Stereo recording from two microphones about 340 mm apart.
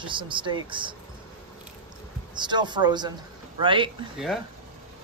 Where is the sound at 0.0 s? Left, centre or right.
Centre.